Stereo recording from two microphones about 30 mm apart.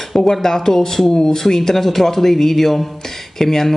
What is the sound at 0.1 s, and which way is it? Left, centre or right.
Speech, centre.